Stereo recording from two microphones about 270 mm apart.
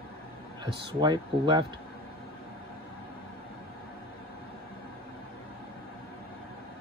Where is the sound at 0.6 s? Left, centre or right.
Centre.